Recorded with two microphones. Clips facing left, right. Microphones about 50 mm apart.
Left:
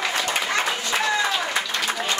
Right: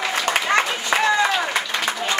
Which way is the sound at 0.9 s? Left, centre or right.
Right.